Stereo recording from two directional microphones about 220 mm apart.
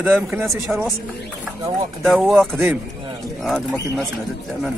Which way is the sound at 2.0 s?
Centre (ahead or behind).